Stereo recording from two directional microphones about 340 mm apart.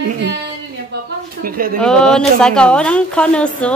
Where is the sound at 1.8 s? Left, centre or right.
Centre.